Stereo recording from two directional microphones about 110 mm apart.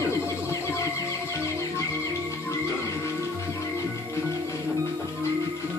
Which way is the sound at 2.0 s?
25° left (ahead or behind).